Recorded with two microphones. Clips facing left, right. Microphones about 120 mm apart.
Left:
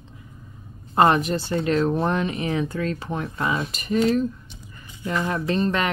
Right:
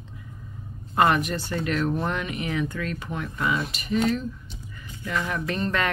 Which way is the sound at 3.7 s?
40° left (ahead or behind).